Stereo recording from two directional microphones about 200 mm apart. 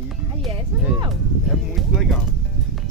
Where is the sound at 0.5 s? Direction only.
20° right (ahead or behind).